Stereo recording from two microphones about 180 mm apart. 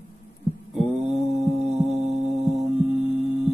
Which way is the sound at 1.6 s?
35° right (ahead or behind).